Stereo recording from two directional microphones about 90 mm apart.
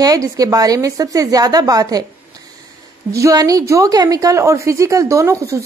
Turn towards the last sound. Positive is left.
turn(degrees=-35)  # may be behind; listen again after turning